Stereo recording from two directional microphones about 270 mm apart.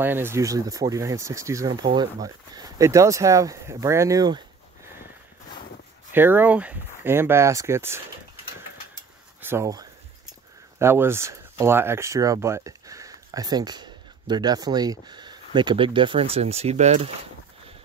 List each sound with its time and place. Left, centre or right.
0.0 s speech: centre
6.1 s speech: centre
9.4 s speech: centre; by 17.1 s right